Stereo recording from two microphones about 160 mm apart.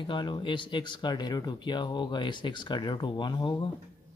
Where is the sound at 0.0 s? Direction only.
30° left (ahead or behind).